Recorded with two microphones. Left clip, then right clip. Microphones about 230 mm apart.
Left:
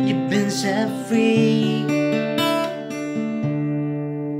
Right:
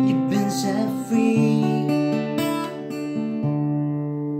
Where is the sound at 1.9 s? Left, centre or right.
Centre.